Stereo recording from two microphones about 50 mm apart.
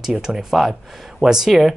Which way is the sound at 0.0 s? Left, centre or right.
Centre.